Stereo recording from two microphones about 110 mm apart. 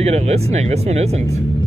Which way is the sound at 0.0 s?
75° right (ahead or behind).